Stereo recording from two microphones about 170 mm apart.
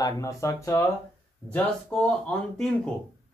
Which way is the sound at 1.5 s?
5° left (ahead or behind).